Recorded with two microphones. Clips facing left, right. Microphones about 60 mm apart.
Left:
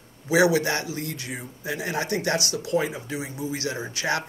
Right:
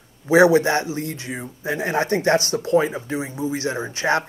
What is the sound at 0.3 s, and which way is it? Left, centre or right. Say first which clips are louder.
Speech: right 6 dB; right.